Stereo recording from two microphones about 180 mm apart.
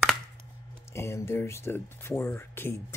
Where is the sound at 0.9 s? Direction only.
15° left (ahead or behind).